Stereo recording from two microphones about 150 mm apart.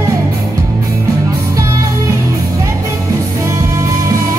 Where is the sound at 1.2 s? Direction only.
20° right (ahead or behind).